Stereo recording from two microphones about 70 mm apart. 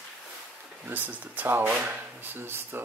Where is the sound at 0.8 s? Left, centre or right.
Right.